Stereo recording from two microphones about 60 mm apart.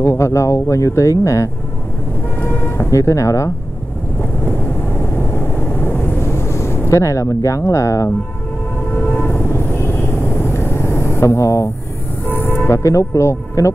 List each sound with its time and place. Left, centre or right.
0.0 s speech: left
2.3 s vehicle: left
2.8 s speech: left
4.2 s vehicle: left
8.9 s vehicle: left
12.3 s speech: left